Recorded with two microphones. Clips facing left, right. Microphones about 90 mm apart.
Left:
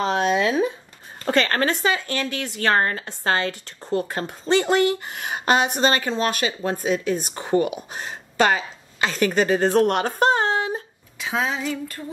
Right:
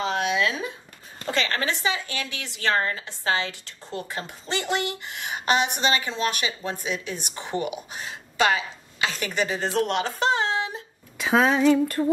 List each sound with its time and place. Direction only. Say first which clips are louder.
0.0 s a sound: left 4 dB; 40° left (ahead or behind)
1.2 s speech: left 6 dB; 50° left (ahead or behind)
11.1 s speech: right 5 dB; 60° right (ahead or behind)